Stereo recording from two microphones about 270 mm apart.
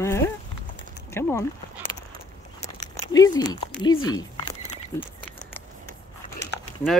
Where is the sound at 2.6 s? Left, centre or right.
Left.